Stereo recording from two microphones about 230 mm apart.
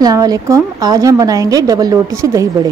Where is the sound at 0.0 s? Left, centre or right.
Centre.